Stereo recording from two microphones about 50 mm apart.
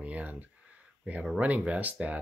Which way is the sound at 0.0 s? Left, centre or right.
Right.